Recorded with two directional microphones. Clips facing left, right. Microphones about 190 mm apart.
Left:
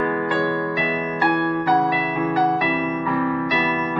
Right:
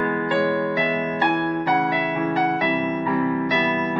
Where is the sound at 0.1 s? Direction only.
25° right (ahead or behind).